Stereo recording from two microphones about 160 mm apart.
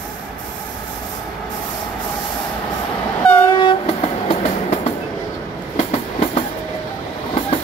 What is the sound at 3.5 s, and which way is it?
Train, 30° left (ahead or behind).